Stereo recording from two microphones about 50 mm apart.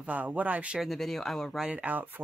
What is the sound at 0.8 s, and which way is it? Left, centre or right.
Speech, centre.